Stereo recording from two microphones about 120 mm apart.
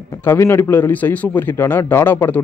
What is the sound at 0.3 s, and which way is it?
A man's voice, 20° left (ahead or behind).